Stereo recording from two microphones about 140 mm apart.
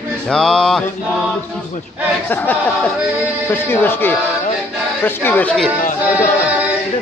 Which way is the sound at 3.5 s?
15° left (ahead or behind).